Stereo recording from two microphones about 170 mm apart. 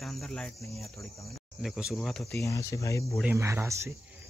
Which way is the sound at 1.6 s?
Centre (ahead or behind).